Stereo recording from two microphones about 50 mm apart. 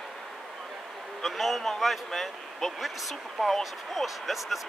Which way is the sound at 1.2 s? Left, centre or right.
Centre.